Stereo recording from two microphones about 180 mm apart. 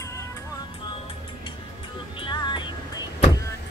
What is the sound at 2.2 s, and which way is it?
Music, 25° left (ahead or behind).